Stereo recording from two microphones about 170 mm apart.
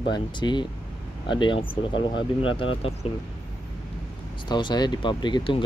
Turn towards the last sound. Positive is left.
turn(degrees=30)  # may be behind; listen again after turning